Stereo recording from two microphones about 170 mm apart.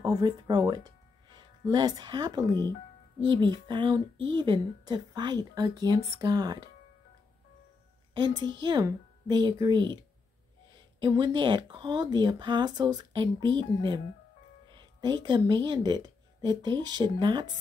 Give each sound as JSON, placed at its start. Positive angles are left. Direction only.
{"t": 0.0, "sound": "speech", "side_deg": -25}
{"t": 8.1, "sound": "speech", "side_deg": -25}
{"t": 11.0, "sound": "speech", "side_deg": -25}
{"t": 14.7, "sound": "music", "side_deg": -25}
{"t": 15.2, "sound": "speech", "side_deg": -25}